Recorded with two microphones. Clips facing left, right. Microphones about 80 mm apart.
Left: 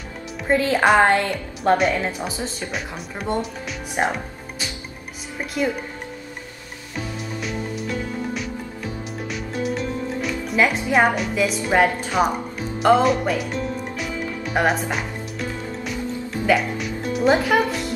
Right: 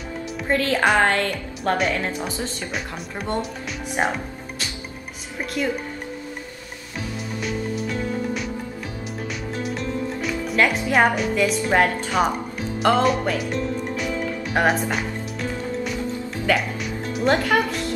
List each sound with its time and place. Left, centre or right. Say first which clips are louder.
0.5 s a woman's voice: left 3 dB; centre
1.8 s speech: left 2 dB; centre
4.0 s music: left 1 dB; centre
5.4 s speech: left 2 dB; centre
7.3 s music: right 3 dB; centre
16.4 s music: left 3 dB; centre